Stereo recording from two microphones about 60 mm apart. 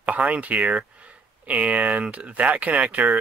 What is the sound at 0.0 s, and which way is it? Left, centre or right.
Speech, right.